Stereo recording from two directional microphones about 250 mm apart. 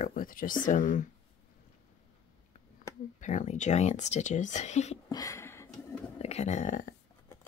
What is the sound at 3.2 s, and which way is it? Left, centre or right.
Speech, left.